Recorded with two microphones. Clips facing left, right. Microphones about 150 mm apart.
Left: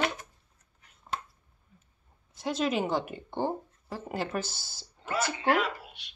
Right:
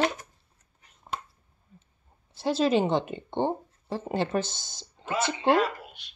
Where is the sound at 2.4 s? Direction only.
30° right (ahead or behind).